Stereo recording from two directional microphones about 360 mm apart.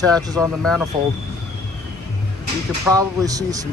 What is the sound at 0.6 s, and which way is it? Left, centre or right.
Speech, centre.